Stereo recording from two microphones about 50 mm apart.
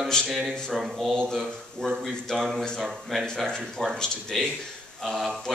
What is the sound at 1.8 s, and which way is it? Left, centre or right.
Speech, centre.